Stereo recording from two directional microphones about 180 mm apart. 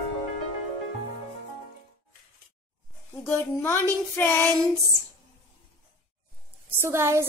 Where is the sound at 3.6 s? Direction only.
10° left (ahead or behind).